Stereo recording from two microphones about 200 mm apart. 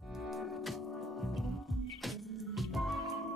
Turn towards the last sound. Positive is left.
turn(degrees=0)  # may be behind; listen again after turning